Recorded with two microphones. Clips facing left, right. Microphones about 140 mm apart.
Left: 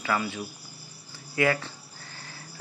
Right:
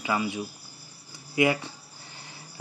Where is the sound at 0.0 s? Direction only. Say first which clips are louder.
Right 1 dB; 15° right (ahead or behind).